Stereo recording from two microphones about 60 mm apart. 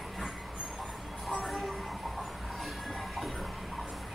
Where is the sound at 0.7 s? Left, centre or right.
Centre.